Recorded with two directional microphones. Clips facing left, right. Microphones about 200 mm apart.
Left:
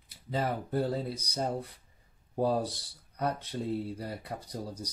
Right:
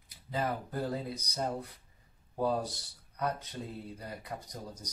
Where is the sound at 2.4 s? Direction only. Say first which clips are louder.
Left 3 dB; 35° left (ahead or behind).